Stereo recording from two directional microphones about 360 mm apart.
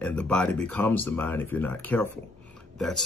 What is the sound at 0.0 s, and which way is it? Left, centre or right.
Speech, centre.